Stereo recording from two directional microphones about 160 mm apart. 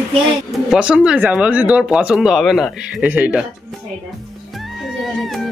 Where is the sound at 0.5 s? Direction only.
5° right (ahead or behind).